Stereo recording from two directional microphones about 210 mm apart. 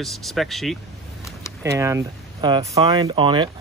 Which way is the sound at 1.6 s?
15° right (ahead or behind).